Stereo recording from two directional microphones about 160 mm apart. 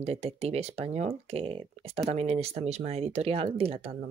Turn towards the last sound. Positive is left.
turn(degrees=-35)  # may be behind; listen again after turning